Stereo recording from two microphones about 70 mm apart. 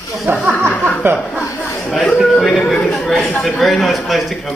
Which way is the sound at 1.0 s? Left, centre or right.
Right.